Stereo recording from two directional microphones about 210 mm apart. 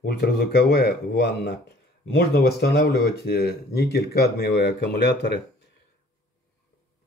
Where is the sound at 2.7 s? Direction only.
50° left (ahead or behind).